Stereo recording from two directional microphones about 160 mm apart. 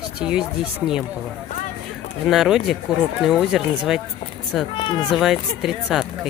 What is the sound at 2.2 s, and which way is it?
Speech, centre (ahead or behind).